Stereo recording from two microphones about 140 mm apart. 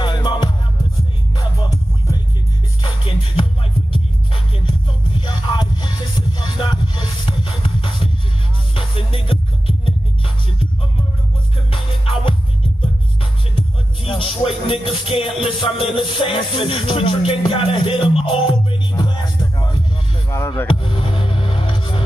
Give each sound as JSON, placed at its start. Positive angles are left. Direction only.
{"t": 0.0, "sound": "music", "side_deg": 35}
{"t": 2.8, "sound": "music", "side_deg": 40}
{"t": 4.6, "sound": "music", "side_deg": 35}
{"t": 11.7, "sound": "music", "side_deg": 40}
{"t": 13.6, "sound": "music", "side_deg": 40}
{"t": 20.2, "sound": "music", "side_deg": 20}
{"t": 20.6, "sound": "music", "side_deg": 40}